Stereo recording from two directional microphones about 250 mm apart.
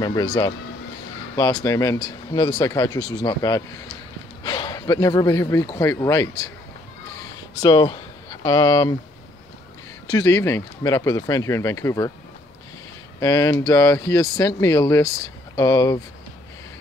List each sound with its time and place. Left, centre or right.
0.0 s speech: centre
7.6 s speech: centre
10.0 s speech: centre
13.2 s speech: centre